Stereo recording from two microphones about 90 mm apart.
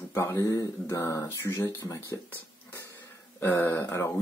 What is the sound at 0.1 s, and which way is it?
Speech, 30° left (ahead or behind).